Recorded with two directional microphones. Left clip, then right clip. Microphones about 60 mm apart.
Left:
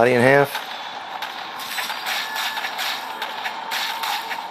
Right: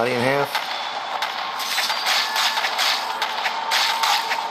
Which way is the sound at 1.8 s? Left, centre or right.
Right.